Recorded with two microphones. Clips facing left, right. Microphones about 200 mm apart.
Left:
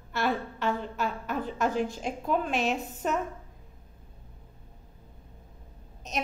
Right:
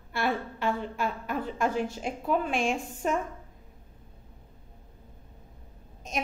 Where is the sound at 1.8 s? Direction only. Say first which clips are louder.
Left 1 dB; 5° right (ahead or behind).